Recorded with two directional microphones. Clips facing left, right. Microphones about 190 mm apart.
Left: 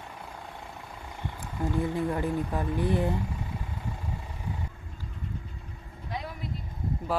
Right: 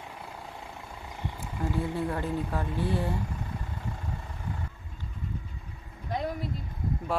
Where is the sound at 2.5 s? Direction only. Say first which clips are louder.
Left 2 dB; 15° left (ahead or behind).